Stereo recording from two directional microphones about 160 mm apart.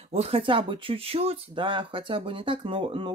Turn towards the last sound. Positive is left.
turn(degrees=-30)  # may be behind; listen again after turning